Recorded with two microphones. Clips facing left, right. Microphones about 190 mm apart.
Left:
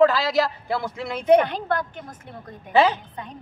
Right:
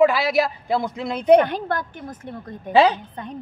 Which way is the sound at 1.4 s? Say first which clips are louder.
Right 1 dB; 50° right (ahead or behind).